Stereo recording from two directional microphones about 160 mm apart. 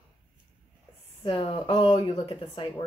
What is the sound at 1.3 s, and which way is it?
Speech, 35° left (ahead or behind).